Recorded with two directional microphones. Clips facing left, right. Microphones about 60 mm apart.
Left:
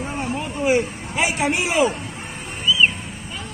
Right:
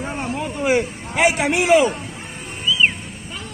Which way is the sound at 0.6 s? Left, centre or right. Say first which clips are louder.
Even; right.